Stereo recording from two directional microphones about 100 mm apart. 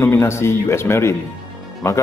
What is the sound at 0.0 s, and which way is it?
A man's voice, 25° left (ahead or behind).